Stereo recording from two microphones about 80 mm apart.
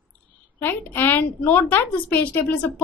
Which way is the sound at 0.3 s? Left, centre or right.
Left.